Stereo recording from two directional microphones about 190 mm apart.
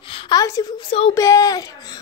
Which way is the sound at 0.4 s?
20° left (ahead or behind).